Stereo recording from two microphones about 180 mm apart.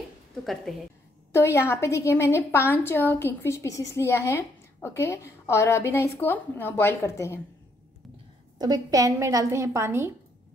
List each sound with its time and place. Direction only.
1.3 s a woman's voice: 15° left (ahead or behind)
8.5 s a woman's voice: 20° right (ahead or behind)